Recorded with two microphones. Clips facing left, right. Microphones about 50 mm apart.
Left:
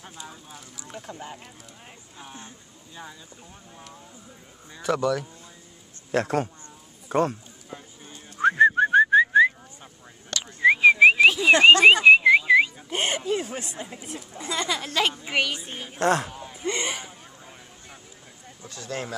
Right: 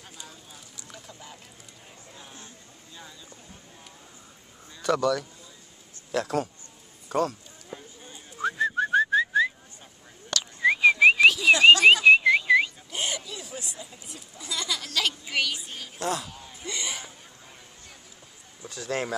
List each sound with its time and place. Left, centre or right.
1.0 s a woman's voice: left
2.1 s speech: left
4.8 s speech: centre
6.1 s a woman's voice: left
8.4 s whistling: left; by 11.2 s centre
11.2 s whistling: left
12.1 s a sound: centre
12.9 s a woman's voice: left
16.0 s speech: left
16.3 s a sound: left
16.6 s speech: left
18.9 s speech: right